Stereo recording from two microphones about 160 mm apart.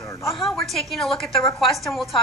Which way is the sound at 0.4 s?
Centre (ahead or behind).